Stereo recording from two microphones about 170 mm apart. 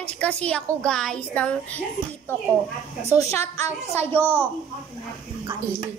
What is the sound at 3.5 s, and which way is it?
Speech, 15° left (ahead or behind).